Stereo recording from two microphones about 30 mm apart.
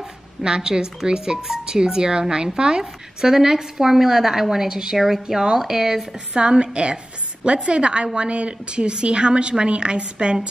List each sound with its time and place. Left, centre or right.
0.6 s a woman's voice: right
4.9 s a woman's voice: centre
5.6 s a woman's voice: centre
6.3 s a woman's voice: right